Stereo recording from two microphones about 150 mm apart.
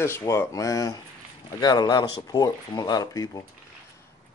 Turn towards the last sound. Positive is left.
turn(degrees=25)  # may be behind; listen again after turning